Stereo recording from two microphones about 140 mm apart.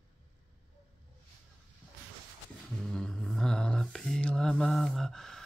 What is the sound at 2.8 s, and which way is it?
Mantra, 5° left (ahead or behind).